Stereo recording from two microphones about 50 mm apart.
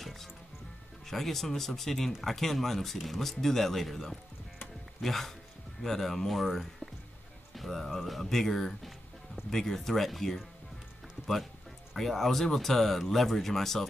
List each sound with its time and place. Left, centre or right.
0.0 s music: centre
1.0 s speech: centre
11.9 s speech: centre